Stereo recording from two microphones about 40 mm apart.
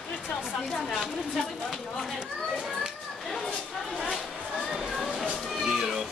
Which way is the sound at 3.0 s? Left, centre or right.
Centre.